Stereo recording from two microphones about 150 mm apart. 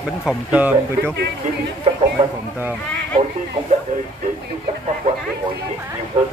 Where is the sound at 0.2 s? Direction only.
5° right (ahead or behind).